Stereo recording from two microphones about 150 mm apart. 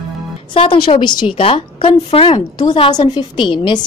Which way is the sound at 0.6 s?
35° left (ahead or behind).